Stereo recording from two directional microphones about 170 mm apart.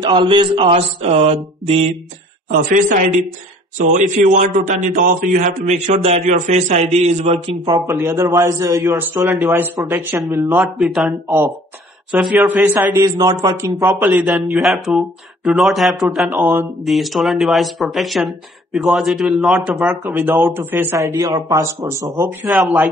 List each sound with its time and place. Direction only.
0.0 s mantra: 25° right (ahead or behind)
2.7 s a man's voice: 45° right (ahead or behind)
7.6 s a man's voice: 20° right (ahead or behind); by 11.1 s centre (ahead or behind)
11.2 s a man's voice: 15° right (ahead or behind)
14.2 s speech: centre (ahead or behind); by 22.3 s 20° right (ahead or behind)
22.5 s speech: centre (ahead or behind)